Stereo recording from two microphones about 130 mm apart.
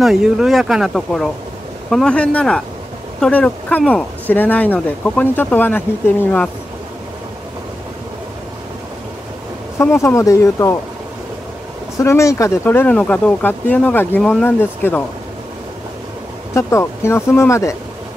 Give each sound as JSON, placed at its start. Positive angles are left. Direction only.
{"t": 0.0, "sound": "speech", "side_deg": -5}
{"t": 9.8, "sound": "speech", "side_deg": 20}
{"t": 12.0, "sound": "speech", "side_deg": 20}
{"t": 16.5, "sound": "speech", "side_deg": 20}